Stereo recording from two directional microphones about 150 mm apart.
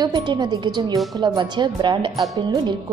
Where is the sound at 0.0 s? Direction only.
30° right (ahead or behind).